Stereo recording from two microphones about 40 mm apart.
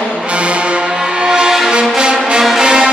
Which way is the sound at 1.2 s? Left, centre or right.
Centre.